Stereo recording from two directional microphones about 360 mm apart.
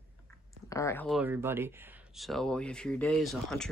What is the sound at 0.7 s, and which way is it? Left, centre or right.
Speech, centre.